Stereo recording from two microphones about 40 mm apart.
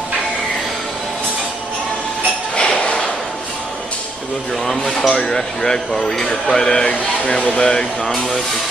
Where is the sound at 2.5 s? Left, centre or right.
Left.